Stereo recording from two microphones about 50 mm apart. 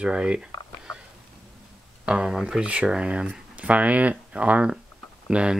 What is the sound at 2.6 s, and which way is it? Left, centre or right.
Speech, right.